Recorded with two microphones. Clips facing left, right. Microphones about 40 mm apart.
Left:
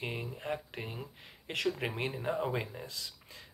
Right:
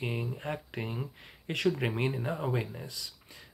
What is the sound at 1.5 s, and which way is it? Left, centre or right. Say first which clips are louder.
Speech: right 4 dB; right.